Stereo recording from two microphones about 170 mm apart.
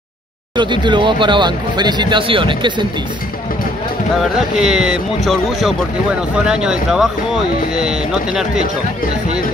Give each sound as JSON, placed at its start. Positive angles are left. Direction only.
{"t": 0.6, "sound": "speech", "side_deg": -25}
{"t": 4.6, "sound": "speech", "side_deg": -5}